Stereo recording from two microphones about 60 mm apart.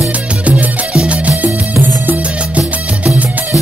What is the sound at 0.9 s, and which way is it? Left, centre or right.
Music, right.